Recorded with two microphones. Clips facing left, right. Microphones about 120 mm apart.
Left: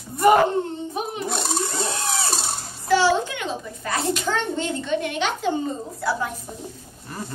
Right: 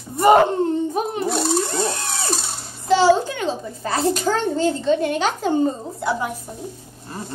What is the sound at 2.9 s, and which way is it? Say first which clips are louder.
A child's voice: right 4 dB; 30° right (ahead or behind).